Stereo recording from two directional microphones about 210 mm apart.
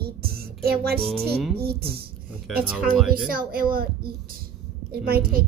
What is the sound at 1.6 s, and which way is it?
Speech, 45° right (ahead or behind).